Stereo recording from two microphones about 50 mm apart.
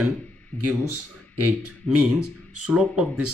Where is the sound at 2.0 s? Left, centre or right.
Right.